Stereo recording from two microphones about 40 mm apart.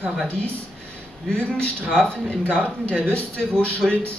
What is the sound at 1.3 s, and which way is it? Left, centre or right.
A man's voice, left.